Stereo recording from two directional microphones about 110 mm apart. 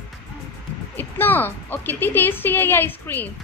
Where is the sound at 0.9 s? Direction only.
20° left (ahead or behind).